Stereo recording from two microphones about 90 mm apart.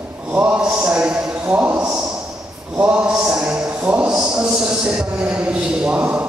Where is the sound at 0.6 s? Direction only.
10° right (ahead or behind).